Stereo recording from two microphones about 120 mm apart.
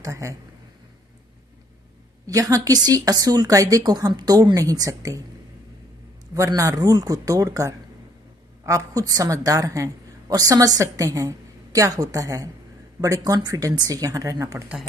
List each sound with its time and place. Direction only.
0.0 s a woman's voice: 25° right (ahead or behind)
2.2 s a woman's voice: 30° right (ahead or behind)
6.3 s a woman's voice: 25° right (ahead or behind)